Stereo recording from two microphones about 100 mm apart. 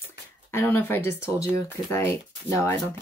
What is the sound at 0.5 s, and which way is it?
Speech, 25° left (ahead or behind).